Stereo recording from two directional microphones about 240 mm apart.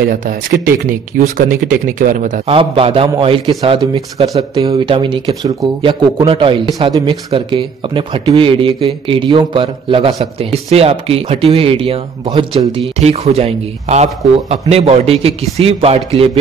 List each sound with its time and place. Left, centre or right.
0.0 s speech: right